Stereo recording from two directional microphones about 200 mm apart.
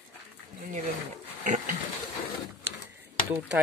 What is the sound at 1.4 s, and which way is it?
Pig, 40° right (ahead or behind).